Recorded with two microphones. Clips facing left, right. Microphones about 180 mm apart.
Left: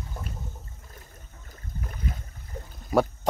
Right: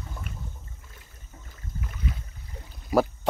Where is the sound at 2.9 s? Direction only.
Centre (ahead or behind).